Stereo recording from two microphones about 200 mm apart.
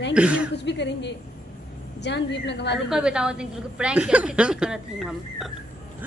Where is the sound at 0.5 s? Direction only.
60° left (ahead or behind).